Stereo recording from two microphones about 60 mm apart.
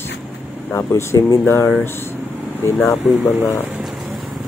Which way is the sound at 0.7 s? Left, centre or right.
Left.